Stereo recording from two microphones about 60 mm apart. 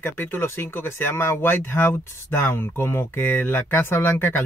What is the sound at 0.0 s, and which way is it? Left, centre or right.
Speech, left.